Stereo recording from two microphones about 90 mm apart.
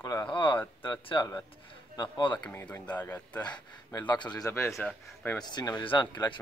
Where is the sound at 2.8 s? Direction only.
20° left (ahead or behind).